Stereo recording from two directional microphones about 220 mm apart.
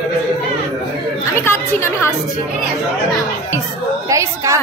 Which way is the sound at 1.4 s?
10° left (ahead or behind).